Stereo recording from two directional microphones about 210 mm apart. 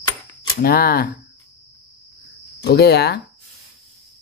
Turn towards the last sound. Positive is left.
turn(degrees=50)  # may be behind; listen again after turning